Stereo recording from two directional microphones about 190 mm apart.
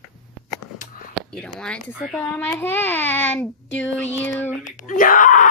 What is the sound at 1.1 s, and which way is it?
A child's voice, 5° left (ahead or behind).